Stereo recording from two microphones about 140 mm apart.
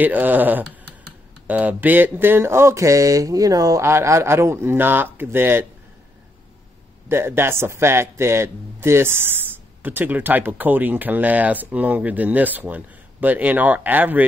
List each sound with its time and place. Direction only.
0.0 s speech: 10° right (ahead or behind)
7.1 s speech: 15° right (ahead or behind)